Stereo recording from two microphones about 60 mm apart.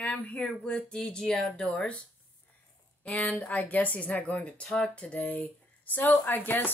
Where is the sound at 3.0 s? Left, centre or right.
Left.